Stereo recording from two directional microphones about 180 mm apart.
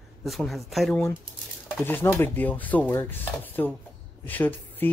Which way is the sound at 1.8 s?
10° left (ahead or behind).